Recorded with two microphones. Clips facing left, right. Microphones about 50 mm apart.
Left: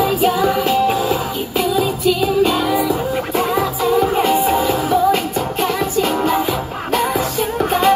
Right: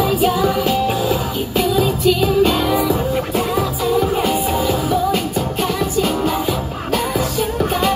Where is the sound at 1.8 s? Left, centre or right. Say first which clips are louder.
Right 1 dB; centre.